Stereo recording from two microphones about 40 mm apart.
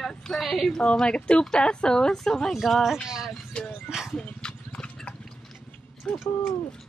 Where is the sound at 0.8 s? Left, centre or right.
Left.